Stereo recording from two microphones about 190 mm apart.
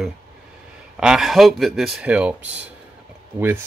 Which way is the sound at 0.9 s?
5° right (ahead or behind).